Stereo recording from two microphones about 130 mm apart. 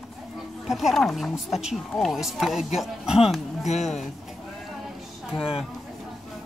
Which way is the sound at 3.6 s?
60° left (ahead or behind).